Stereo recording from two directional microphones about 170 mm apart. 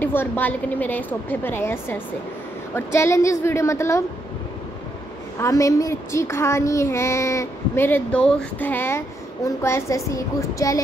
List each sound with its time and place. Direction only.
0.0 s child singing: 10° left (ahead or behind)
5.4 s child singing: 20° left (ahead or behind)